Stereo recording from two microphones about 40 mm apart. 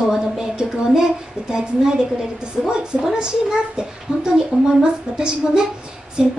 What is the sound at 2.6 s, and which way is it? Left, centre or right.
A child's voice, centre.